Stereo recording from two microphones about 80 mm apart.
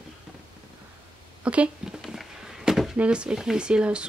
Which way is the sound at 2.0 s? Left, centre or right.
Centre.